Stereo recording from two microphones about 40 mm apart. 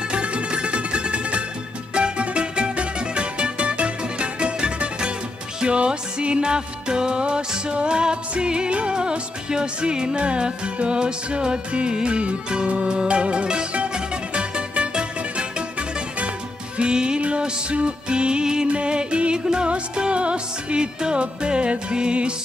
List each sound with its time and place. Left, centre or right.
0.1 s music: right
16.7 s music: right